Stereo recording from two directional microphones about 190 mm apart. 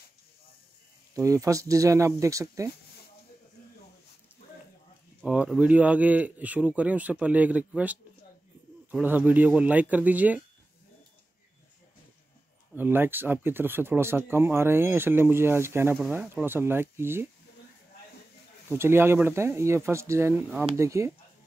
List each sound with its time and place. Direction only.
1.1 s speech: 15° right (ahead or behind)
5.2 s speech: 5° right (ahead or behind)
12.7 s speech: 10° right (ahead or behind)
18.7 s speech: 15° right (ahead or behind)